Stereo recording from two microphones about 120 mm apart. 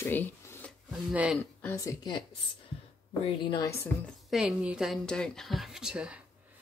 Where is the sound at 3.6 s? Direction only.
25° left (ahead or behind).